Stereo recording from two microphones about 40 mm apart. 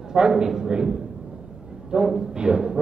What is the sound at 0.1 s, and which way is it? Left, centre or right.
A man's voice, centre.